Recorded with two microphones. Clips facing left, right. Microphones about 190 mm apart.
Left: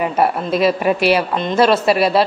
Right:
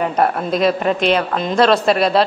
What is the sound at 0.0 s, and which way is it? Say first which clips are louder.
Speech: even; 5° left (ahead or behind).